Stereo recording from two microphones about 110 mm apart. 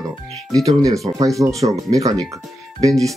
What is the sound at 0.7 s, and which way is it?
Speech, 30° right (ahead or behind).